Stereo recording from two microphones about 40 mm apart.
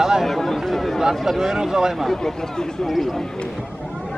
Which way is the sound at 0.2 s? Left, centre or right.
Centre.